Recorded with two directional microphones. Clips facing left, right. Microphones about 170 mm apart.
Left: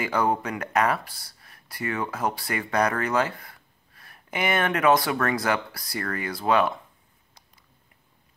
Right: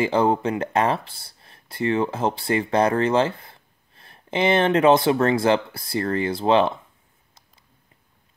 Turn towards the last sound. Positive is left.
turn(degrees=-25)  # may be behind; listen again after turning